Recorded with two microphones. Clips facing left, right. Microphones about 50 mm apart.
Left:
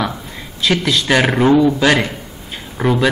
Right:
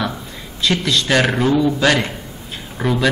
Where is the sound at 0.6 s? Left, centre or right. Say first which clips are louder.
Left 2 dB; centre.